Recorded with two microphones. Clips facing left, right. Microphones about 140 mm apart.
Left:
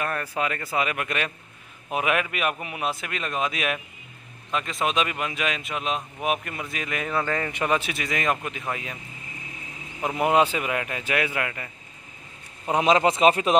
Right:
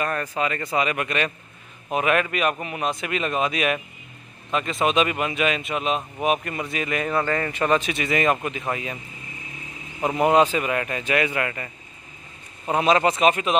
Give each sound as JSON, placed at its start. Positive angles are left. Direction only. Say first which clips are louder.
{"t": 0.0, "sound": "speech", "louder": "right 2 dB", "side_deg": 5}
{"t": 10.0, "sound": "speech", "louder": "right 3 dB", "side_deg": 5}
{"t": 12.6, "sound": "speech", "louder": "right 1 dB", "side_deg": 20}